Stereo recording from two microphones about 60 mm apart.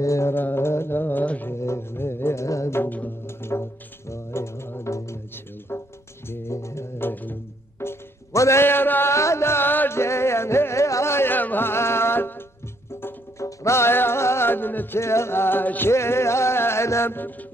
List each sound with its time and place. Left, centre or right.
0.0 s music: left
0.3 s music: left
1.2 s music: left
1.5 s music: left
2.4 s music: left
3.3 s music: left
4.1 s didgeridoo: left
5.7 s music: left
7.1 s music: left
7.8 s music: left
9.1 s music: left
13.4 s music: left
15.0 s music: left
15.9 s music: left